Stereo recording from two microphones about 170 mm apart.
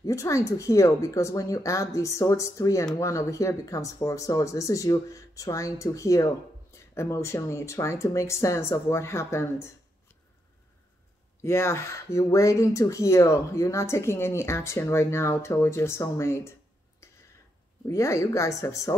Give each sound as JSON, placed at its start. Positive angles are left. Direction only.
{"t": 0.0, "sound": "speech", "side_deg": 20}
{"t": 11.4, "sound": "speech", "side_deg": 15}
{"t": 17.0, "sound": "a sound", "side_deg": 15}
{"t": 17.8, "sound": "speech", "side_deg": 15}